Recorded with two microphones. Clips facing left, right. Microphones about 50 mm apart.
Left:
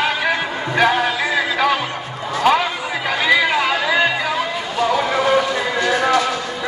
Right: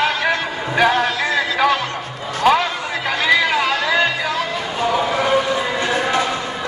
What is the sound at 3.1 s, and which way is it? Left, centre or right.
Music, centre.